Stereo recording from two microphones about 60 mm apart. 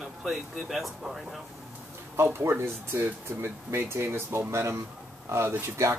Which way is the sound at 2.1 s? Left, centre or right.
Right.